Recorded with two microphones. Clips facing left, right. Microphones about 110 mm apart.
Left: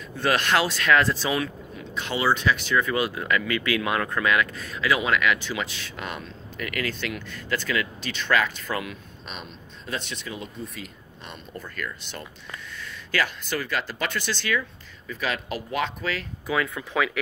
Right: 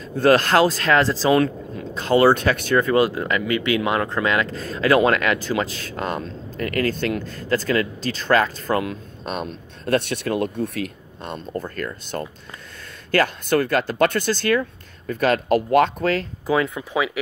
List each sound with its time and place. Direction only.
0.1 s speech: 40° right (ahead or behind)
2.1 s speech: 55° right (ahead or behind)
11.2 s speech: 45° right (ahead or behind); by 17.2 s 15° right (ahead or behind)